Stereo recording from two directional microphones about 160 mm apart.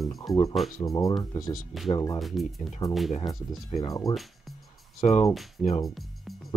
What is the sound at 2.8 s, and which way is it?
Speech, 20° left (ahead or behind).